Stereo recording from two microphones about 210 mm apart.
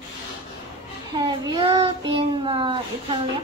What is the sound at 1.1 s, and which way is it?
Child singing, 25° right (ahead or behind).